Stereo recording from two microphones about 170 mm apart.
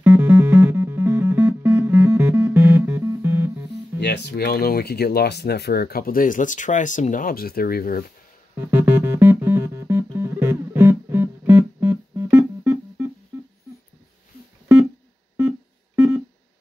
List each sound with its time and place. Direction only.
0.0 s music: 10° right (ahead or behind)
4.0 s speech: 75° left (ahead or behind); by 8.0 s 60° left (ahead or behind)
8.5 s music: 10° right (ahead or behind)